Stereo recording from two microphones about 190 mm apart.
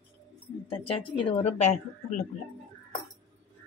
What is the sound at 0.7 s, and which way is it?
A woman's voice, 30° left (ahead or behind).